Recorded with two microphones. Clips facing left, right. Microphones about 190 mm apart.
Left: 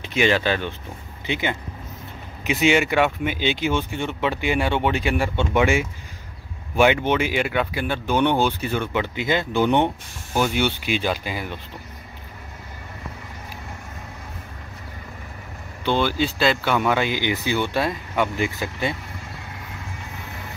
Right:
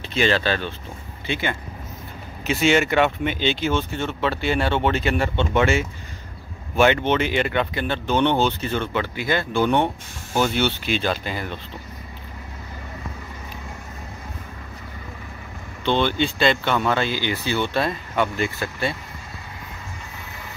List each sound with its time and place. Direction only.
0.0 s speech: 15° left (ahead or behind)
15.8 s speech: 5° left (ahead or behind)